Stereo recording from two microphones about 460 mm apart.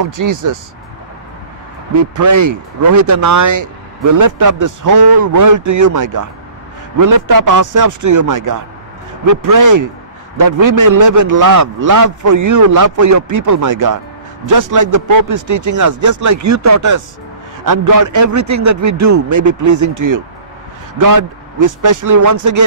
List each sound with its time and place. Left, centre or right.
0.0 s speech: right
2.0 s speech: right